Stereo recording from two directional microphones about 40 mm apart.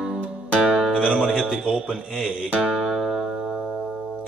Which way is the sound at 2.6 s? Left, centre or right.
Centre.